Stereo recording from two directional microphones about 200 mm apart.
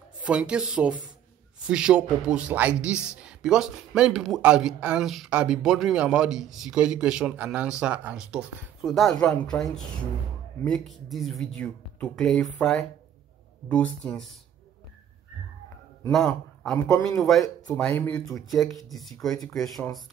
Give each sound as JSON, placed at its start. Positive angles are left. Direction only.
{"t": 0.2, "sound": "a man's voice", "side_deg": -5}
{"t": 16.1, "sound": "a man's voice", "side_deg": 0}
{"t": 17.7, "sound": "a man's voice", "side_deg": 5}